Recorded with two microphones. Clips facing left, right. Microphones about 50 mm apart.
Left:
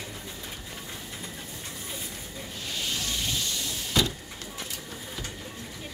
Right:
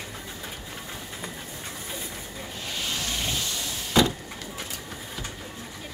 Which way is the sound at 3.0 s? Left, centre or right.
Right.